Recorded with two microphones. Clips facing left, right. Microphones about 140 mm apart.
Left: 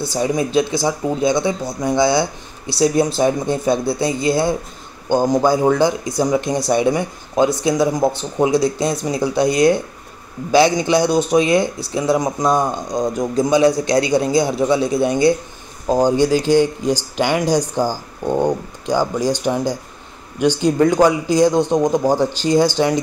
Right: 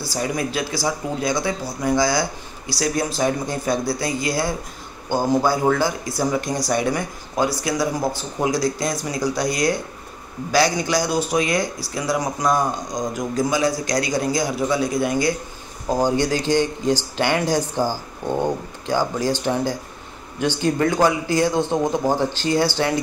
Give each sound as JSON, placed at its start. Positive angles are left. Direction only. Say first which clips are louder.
{"t": 0.0, "sound": "speech", "louder": "left 5 dB", "side_deg": 20}
{"t": 15.9, "sound": "speech", "louder": "left 5 dB", "side_deg": 15}